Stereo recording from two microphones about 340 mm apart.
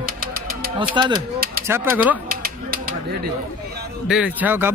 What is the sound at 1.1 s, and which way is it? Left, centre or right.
Typewriter, right.